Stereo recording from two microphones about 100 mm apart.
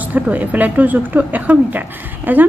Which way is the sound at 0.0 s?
15° right (ahead or behind).